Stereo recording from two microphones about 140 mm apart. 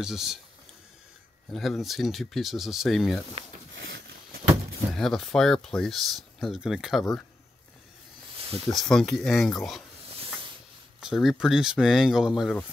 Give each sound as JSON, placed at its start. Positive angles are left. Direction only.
{"t": 0.0, "sound": "speech", "side_deg": -5}
{"t": 1.5, "sound": "speech", "side_deg": 0}
{"t": 3.4, "sound": "speech", "side_deg": -50}
{"t": 4.9, "sound": "speech", "side_deg": 0}
{"t": 8.4, "sound": "snake", "side_deg": -45}
{"t": 8.6, "sound": "speech", "side_deg": 0}
{"t": 11.0, "sound": "speech", "side_deg": -5}